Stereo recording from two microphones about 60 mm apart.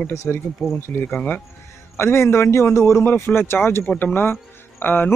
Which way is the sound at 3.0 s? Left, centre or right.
Left.